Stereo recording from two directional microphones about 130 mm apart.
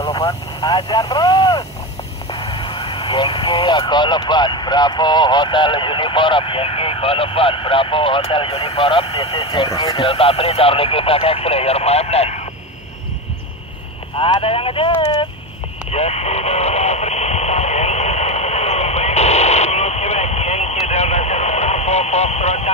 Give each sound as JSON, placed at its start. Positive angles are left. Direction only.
{"t": 0.1, "sound": "vehicle", "side_deg": 25}
{"t": 0.7, "sound": "speech", "side_deg": 30}
{"t": 2.3, "sound": "speech", "side_deg": 45}
{"t": 9.7, "sound": "speech", "side_deg": 30}
{"t": 9.9, "sound": "speech", "side_deg": 50}
{"t": 14.1, "sound": "speech", "side_deg": 45}
{"t": 15.9, "sound": "radio", "side_deg": 55}